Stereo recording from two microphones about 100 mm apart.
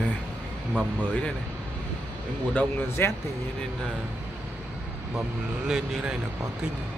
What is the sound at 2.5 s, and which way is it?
Speech, 20° left (ahead or behind).